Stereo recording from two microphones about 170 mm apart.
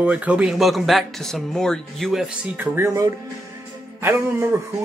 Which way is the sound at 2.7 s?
15° right (ahead or behind).